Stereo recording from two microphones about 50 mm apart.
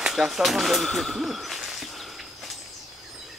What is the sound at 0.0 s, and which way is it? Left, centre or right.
Speech, centre.